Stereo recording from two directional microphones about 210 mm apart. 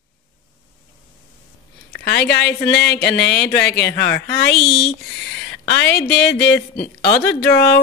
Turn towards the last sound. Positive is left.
turn(degrees=50)  # may be behind; listen again after turning